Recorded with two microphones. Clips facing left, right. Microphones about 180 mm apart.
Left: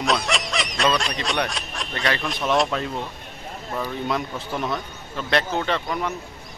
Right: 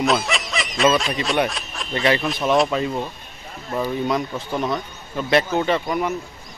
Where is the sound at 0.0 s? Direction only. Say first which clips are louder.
Right 3 dB; centre (ahead or behind).